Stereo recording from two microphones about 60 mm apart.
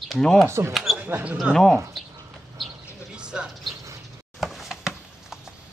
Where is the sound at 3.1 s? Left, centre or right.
Centre.